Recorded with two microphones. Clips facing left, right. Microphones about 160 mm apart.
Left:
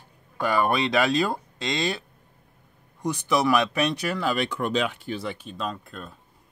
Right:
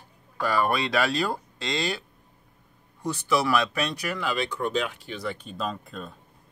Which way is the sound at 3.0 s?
15° left (ahead or behind).